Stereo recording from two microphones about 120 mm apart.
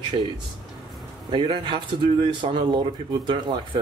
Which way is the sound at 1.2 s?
40° right (ahead or behind).